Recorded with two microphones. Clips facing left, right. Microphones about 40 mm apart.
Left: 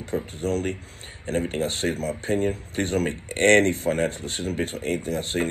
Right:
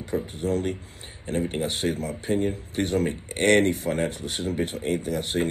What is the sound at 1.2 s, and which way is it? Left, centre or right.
Speech, left.